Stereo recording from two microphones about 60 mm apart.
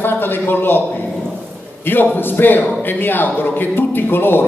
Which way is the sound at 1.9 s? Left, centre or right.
Left.